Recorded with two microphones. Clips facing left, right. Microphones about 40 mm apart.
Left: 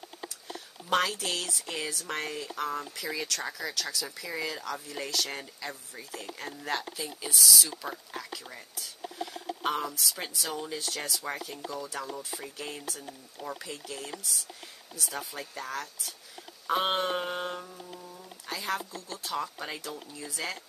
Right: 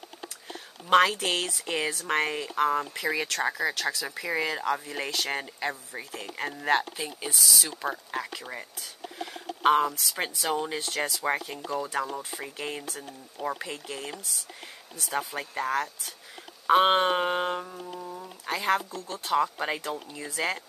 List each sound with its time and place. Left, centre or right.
0.8 s speech: right